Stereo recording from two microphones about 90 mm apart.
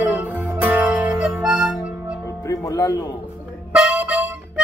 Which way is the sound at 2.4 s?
35° left (ahead or behind).